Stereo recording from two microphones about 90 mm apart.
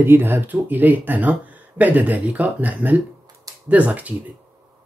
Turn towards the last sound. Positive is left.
turn(degrees=-15)  # may be behind; listen again after turning